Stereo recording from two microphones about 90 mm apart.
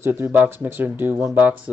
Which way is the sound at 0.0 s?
20° right (ahead or behind).